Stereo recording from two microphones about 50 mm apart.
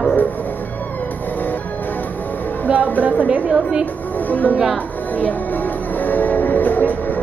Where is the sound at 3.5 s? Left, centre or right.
Right.